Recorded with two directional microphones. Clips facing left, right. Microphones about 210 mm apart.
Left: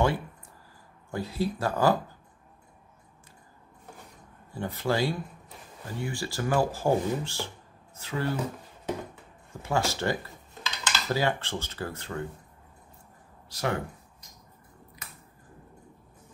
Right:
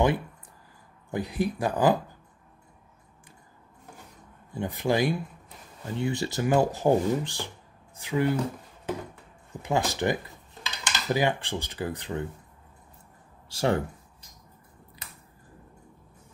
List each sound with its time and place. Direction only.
1.1 s speech: 15° right (ahead or behind)
4.6 s speech: 15° right (ahead or behind)
9.5 s speech: 15° right (ahead or behind)
13.5 s speech: 30° right (ahead or behind)